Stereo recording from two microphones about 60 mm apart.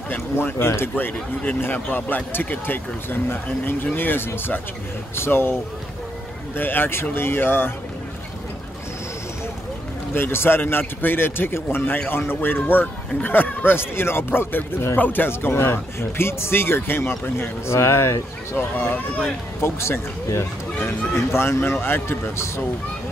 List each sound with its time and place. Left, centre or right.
0.1 s a man's voice: left
1.6 s a man's voice: left
10.1 s a man's voice: left
18.5 s a man's voice: left
19.6 s a man's voice: left